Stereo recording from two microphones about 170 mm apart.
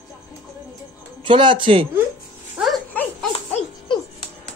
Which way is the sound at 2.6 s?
Centre (ahead or behind).